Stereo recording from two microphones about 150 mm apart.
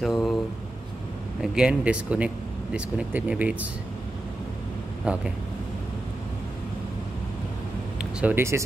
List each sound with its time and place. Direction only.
0.0 s a sound: centre (ahead or behind)
1.4 s speech: 5° right (ahead or behind)
5.0 s speech: 5° right (ahead or behind)
8.0 s speech: 10° right (ahead or behind)